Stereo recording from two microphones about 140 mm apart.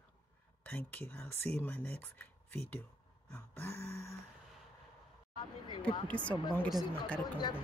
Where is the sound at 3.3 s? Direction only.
15° left (ahead or behind).